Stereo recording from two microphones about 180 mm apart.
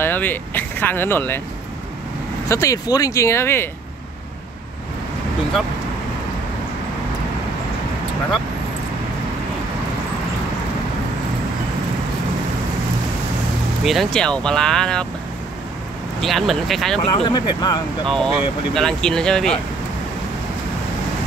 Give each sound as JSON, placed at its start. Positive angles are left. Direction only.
{"t": 0.0, "sound": "speech", "side_deg": 10}
{"t": 2.4, "sound": "speech", "side_deg": 15}
{"t": 13.8, "sound": "speech", "side_deg": 0}
{"t": 16.2, "sound": "speech", "side_deg": 0}
{"t": 17.0, "sound": "speech", "side_deg": 25}
{"t": 18.0, "sound": "speech", "side_deg": 5}